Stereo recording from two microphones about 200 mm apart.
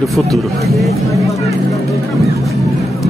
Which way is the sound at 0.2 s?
Centre (ahead or behind).